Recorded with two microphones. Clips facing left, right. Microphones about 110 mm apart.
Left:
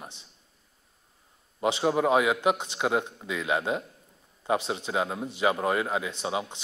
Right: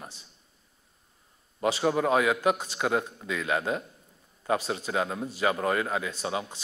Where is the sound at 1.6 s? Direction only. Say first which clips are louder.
Left 1 dB; 15° left (ahead or behind).